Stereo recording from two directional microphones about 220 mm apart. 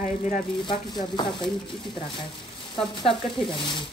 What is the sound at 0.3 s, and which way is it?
Speech, 20° left (ahead or behind).